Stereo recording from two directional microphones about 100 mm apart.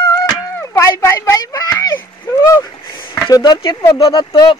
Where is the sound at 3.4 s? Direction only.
45° left (ahead or behind).